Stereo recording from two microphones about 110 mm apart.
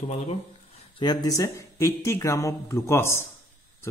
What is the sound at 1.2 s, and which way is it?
Speech, 30° left (ahead or behind).